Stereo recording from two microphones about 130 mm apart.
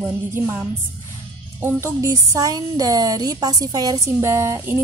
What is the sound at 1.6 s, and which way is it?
A woman's voice, 25° right (ahead or behind).